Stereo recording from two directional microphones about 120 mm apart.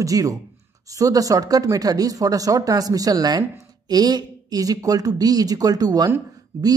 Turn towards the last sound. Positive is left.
turn(degrees=-20)  # may be behind; listen again after turning